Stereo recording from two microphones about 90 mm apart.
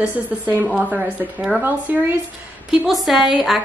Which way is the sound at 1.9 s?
20° right (ahead or behind).